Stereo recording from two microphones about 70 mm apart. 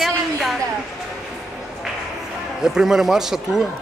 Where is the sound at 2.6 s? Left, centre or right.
Centre.